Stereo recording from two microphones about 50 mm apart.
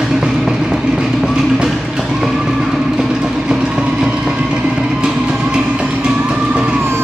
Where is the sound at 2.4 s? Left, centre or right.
Centre.